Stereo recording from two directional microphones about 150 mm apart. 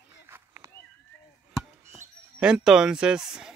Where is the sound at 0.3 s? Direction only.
15° right (ahead or behind).